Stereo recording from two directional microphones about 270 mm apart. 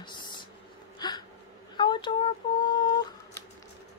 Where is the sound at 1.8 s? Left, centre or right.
Centre.